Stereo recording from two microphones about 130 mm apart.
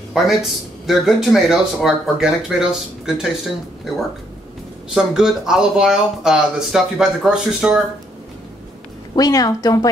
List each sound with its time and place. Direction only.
0.1 s speech: centre (ahead or behind)
4.9 s speech: 5° right (ahead or behind)
9.1 s a woman's voice: 30° left (ahead or behind)